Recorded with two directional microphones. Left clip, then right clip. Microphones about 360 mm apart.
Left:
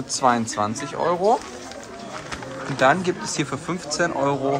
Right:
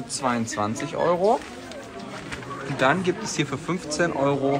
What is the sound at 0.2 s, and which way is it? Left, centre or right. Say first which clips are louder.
Speech: left 5 dB; centre.